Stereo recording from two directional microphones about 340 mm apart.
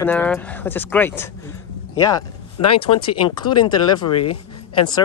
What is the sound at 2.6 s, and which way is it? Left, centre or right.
Speech, centre.